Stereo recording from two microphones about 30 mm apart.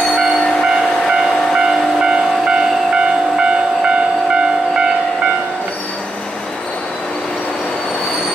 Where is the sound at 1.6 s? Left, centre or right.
Right.